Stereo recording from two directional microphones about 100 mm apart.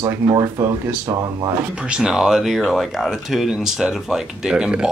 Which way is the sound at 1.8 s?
10° right (ahead or behind).